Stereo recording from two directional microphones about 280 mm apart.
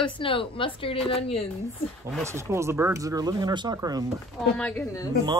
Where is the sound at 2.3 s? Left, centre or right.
Centre.